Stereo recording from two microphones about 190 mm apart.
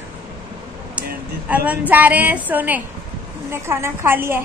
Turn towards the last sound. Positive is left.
turn(degrees=-10)  # may be behind; listen again after turning